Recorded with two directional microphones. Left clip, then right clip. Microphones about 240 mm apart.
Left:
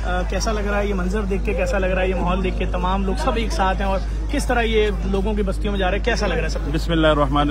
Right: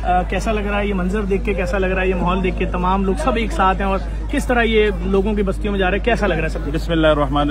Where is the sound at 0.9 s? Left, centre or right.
Right.